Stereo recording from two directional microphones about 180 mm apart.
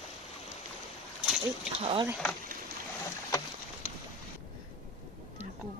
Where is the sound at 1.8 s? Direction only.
30° right (ahead or behind).